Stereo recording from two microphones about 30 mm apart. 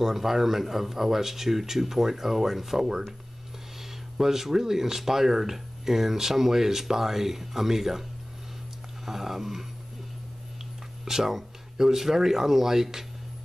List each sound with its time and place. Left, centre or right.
0.0 s speech: centre
4.2 s speech: centre
9.0 s speech: centre
11.1 s speech: centre